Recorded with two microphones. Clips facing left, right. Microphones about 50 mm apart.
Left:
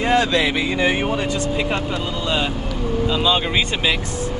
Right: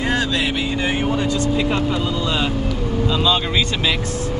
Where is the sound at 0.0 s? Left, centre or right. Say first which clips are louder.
Left 3 dB; left.